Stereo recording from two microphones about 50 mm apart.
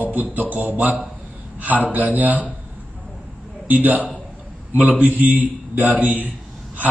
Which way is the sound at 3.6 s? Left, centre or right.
Right.